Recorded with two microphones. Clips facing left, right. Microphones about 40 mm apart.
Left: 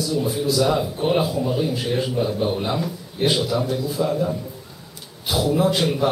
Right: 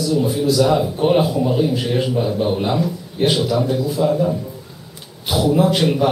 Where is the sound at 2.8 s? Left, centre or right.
Centre.